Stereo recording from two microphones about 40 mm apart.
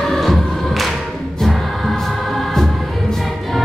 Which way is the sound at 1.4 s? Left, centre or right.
Centre.